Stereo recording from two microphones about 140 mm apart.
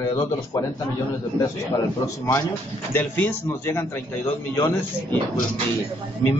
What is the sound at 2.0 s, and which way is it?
A man's voice, 20° left (ahead or behind).